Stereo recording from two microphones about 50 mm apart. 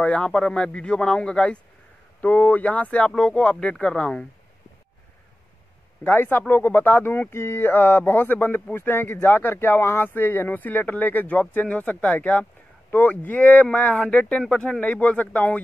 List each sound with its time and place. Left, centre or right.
0.0 s speech: left
0.3 s speech: centre
2.2 s speech: left; by 4.3 s centre
6.0 s speech: left
6.5 s speech: left